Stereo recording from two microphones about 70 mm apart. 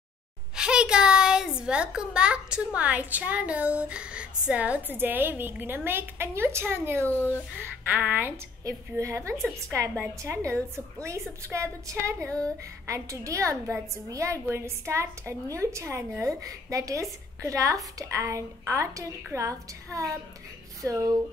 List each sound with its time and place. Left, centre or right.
0.6 s a child's voice: centre; by 7.1 s right
7.8 s a woman's voice: right
8.6 s a woman's voice: right